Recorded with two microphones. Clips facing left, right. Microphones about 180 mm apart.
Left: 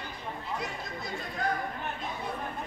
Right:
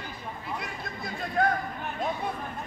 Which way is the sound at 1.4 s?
55° right (ahead or behind).